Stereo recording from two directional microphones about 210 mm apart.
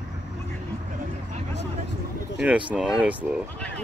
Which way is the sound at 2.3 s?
5° right (ahead or behind).